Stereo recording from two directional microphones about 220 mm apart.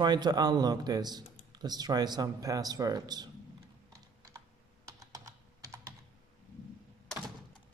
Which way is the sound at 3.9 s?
15° right (ahead or behind).